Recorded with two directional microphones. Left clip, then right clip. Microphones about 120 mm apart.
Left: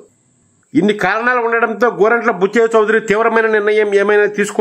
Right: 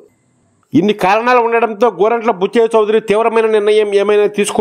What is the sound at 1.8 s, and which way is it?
A man's voice, 35° right (ahead or behind).